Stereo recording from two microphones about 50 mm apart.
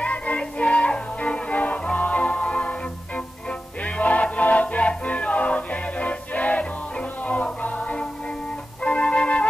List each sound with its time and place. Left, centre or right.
0.0 s music: left